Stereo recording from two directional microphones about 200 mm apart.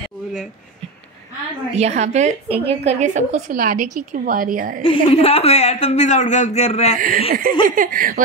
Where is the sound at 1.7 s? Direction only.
35° right (ahead or behind).